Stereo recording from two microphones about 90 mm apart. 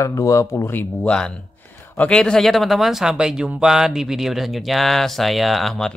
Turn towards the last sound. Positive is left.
turn(degrees=5)  # may be behind; listen again after turning